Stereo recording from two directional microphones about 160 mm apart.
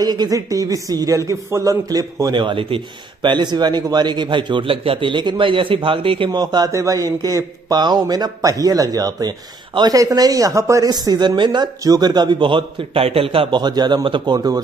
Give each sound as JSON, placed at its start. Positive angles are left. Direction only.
{"t": 0.0, "sound": "speech", "side_deg": -25}